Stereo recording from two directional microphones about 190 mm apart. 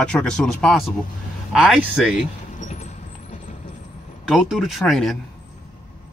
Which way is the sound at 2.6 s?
40° left (ahead or behind).